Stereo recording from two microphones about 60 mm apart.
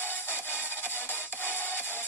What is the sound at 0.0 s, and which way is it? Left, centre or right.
Music, left.